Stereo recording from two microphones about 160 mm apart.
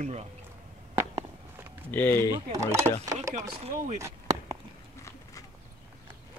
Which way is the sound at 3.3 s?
45° right (ahead or behind).